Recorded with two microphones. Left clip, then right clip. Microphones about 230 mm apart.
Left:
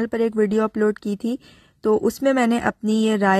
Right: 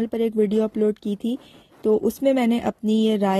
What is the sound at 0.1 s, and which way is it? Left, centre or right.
Speech, left.